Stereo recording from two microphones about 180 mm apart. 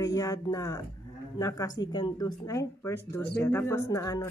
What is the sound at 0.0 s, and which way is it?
Speech, 20° left (ahead or behind).